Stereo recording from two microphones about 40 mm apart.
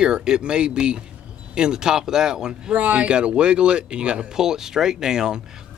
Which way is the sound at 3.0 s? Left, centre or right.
Right.